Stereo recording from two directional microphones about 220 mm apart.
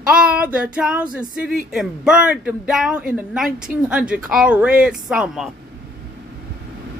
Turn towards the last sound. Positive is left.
turn(degrees=-5)  # may be behind; listen again after turning